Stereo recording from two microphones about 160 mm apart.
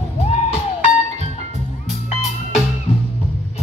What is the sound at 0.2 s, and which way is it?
Music, 45° left (ahead or behind).